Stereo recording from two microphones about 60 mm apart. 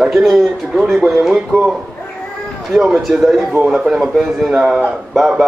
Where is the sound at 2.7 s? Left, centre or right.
Centre.